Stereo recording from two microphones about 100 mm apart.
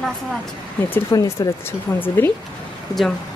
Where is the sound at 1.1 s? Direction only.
35° left (ahead or behind).